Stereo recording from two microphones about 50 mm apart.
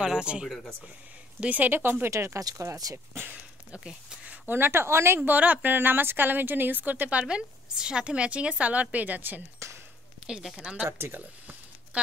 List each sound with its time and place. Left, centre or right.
0.0 s speech: centre
1.4 s a woman's voice: right
1.7 s speech: right
2.0 s speech: right
3.8 s speech: right
4.5 s speech: right
5.2 s a woman's voice: right
10.4 s a woman's voice: centre
10.9 s speech: right
11.1 s a sound: right